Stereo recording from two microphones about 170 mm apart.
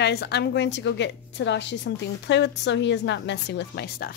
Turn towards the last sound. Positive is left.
turn(degrees=70)  # may be behind; listen again after turning